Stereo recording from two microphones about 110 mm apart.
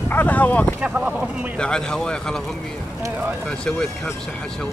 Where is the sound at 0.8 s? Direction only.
10° right (ahead or behind).